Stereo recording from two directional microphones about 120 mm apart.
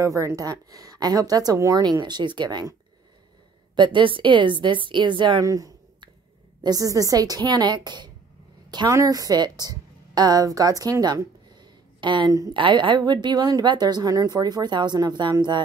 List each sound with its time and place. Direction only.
0.0 s a woman's voice: 25° right (ahead or behind)
3.7 s a woman's voice: 40° right (ahead or behind)
5.4 s a sound: 30° right (ahead or behind)
6.6 s a woman's voice: 30° right (ahead or behind)
8.6 s a sound: 35° right (ahead or behind)
8.9 s a woman's voice: 30° right (ahead or behind)